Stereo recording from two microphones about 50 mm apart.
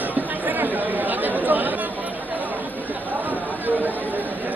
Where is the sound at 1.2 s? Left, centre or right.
Right.